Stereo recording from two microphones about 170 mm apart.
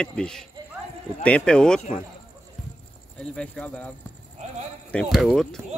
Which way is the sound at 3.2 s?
5° left (ahead or behind).